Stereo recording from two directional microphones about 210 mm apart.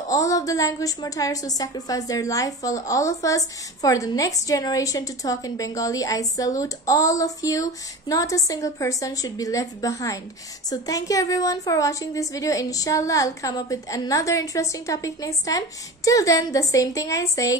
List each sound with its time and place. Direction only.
0.1 s a woman's voice: 15° left (ahead or behind)